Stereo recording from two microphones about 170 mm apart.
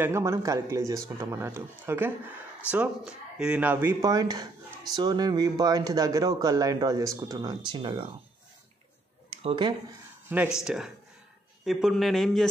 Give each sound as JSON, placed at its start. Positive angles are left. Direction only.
{"t": 0.0, "sound": "speech", "side_deg": -15}
{"t": 9.3, "sound": "speech", "side_deg": -30}
{"t": 10.3, "sound": "a man's voice", "side_deg": -5}